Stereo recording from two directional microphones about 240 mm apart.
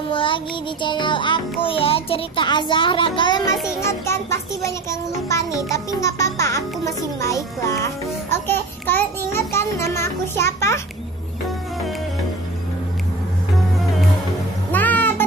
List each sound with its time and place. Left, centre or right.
0.1 s child singing: left
0.8 s a child's voice: centre
3.6 s music: centre
14.7 s music: centre